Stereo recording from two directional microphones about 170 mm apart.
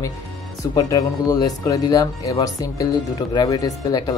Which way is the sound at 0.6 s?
20° left (ahead or behind).